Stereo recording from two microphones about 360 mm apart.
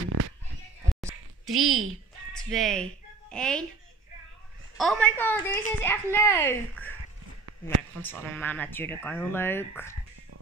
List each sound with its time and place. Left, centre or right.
0.0 s bleat: right
0.8 s a sound: centre
2.3 s a woman's voice: centre
4.7 s a woman's voice: centre
8.0 s a woman's voice: centre